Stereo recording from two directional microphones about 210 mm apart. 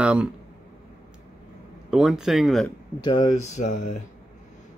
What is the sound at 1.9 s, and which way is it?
Speech, centre (ahead or behind).